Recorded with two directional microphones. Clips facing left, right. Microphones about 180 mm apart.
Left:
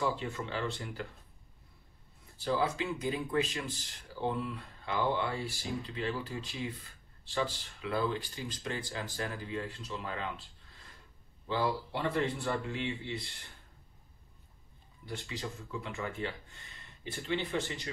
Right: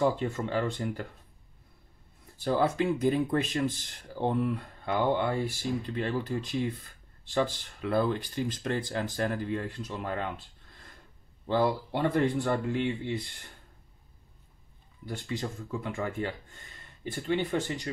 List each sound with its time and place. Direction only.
0.0 s speech: 50° right (ahead or behind)
2.4 s speech: 50° right (ahead or behind)
15.0 s speech: 50° right (ahead or behind)